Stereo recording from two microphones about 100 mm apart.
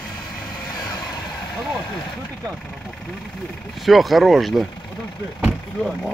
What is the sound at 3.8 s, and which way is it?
Speech, centre (ahead or behind).